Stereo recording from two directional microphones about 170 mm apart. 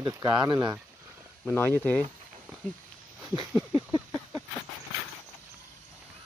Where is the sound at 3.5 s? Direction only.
15° right (ahead or behind).